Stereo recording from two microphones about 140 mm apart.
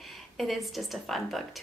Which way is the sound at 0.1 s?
Centre (ahead or behind).